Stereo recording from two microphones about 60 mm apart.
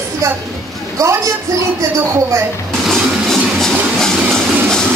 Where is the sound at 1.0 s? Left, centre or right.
Right.